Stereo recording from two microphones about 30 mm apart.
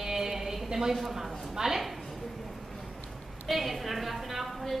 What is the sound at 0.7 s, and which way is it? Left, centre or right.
A woman's voice, centre.